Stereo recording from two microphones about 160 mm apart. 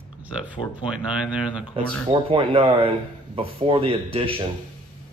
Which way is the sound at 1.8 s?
35° right (ahead or behind).